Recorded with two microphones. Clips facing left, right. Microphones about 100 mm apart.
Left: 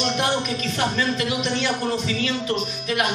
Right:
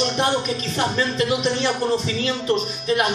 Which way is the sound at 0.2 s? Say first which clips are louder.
Right 2 dB; 35° right (ahead or behind).